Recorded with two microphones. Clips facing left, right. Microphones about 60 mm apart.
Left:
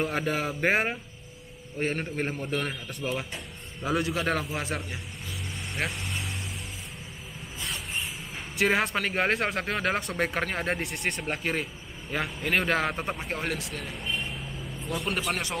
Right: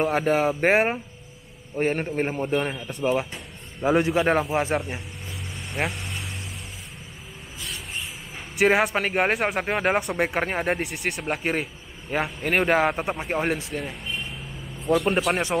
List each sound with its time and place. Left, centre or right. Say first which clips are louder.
0.3 s a man's voice: right 7 dB; right
5.9 s vehicle: right 2 dB; centre
7.6 s a sound: left 1 dB; centre
8.5 s speech: right 5 dB; centre
15.0 s a man's voice: right 7 dB; right